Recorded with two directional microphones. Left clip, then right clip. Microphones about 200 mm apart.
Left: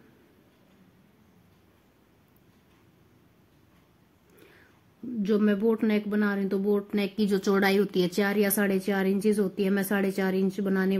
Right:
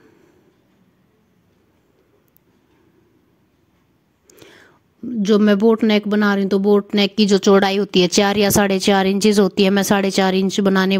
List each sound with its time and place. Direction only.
4.4 s whispering: 40° right (ahead or behind)
5.2 s speech: 40° right (ahead or behind)